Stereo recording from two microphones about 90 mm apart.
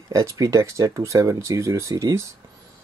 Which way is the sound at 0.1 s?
35° right (ahead or behind).